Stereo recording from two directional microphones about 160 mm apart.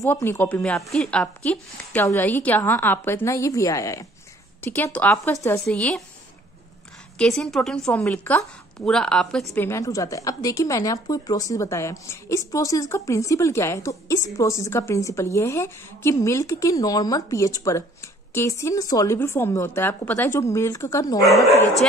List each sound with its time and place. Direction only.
0.0 s speech: 15° left (ahead or behind)
7.2 s a woman's voice: 5° left (ahead or behind)
9.6 s speech: 20° left (ahead or behind)